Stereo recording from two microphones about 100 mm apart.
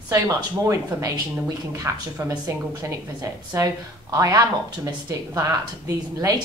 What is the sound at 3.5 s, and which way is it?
Speech, 35° right (ahead or behind).